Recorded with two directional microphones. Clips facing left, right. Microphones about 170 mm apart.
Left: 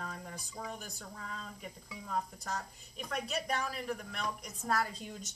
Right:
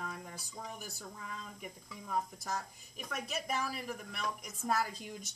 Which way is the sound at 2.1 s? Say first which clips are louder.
Right 1 dB; 10° right (ahead or behind).